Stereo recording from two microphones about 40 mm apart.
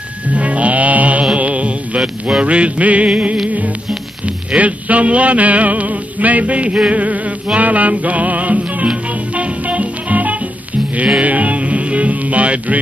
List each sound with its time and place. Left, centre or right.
0.3 s music: right
4.6 s music: right